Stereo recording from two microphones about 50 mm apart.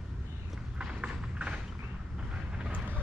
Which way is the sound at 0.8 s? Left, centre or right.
Right.